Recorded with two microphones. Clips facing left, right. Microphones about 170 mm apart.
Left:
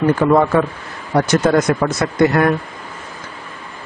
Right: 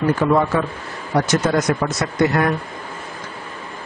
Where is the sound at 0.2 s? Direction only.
60° left (ahead or behind).